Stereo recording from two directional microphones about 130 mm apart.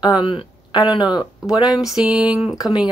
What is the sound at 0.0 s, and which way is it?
Speech, 40° left (ahead or behind).